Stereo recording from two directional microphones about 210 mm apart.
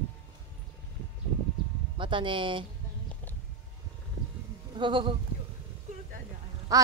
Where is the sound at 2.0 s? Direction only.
25° right (ahead or behind).